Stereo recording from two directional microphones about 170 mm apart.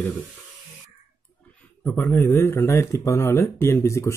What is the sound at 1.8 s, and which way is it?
Speech, 10° left (ahead or behind).